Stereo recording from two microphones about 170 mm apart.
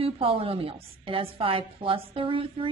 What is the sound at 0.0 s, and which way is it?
A woman's voice, 35° right (ahead or behind).